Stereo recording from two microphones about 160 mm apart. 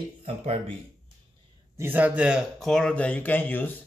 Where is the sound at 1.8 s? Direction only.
10° right (ahead or behind).